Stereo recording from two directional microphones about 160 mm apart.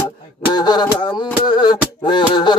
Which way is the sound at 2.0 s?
30° left (ahead or behind).